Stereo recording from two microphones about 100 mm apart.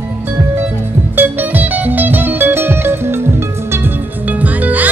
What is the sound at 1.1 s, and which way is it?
Music, 20° right (ahead or behind).